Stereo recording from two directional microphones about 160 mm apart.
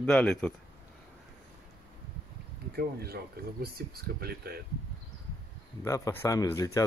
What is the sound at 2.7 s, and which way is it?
Speech, 80° right.